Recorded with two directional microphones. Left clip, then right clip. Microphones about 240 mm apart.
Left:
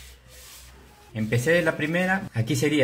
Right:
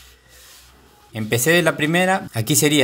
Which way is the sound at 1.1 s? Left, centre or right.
Right.